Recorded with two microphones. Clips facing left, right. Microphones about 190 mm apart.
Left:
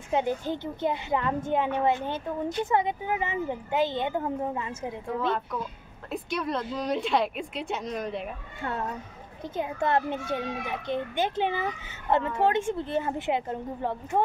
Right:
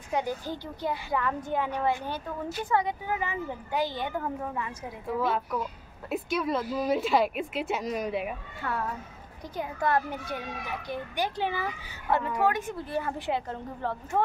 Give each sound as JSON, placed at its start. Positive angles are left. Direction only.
{"t": 0.1, "sound": "a child's voice", "side_deg": 20}
{"t": 5.2, "sound": "a woman's voice", "side_deg": -5}
{"t": 8.5, "sound": "a child's voice", "side_deg": 25}